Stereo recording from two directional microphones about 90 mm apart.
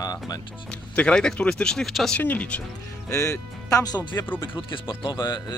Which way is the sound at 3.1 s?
40° left (ahead or behind).